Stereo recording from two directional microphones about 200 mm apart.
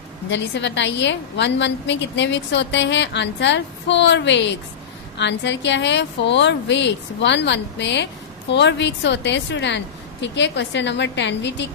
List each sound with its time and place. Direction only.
0.3 s a woman's voice: 60° left (ahead or behind)